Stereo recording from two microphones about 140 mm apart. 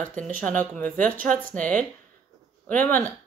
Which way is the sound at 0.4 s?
10° left (ahead or behind).